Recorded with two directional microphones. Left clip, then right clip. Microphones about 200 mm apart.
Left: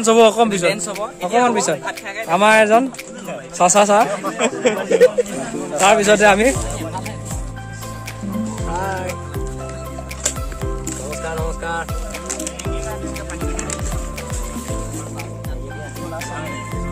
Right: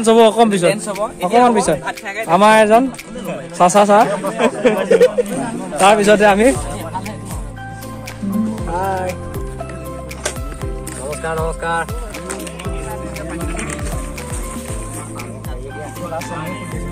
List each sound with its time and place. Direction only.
0.0 s speech: centre (ahead or behind)
0.7 s music: 20° left (ahead or behind)
1.0 s speech: 10° left (ahead or behind)
8.7 s music: centre (ahead or behind)
11.2 s music: 10° left (ahead or behind)